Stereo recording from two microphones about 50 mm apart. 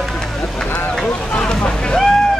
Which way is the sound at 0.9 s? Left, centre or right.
Centre.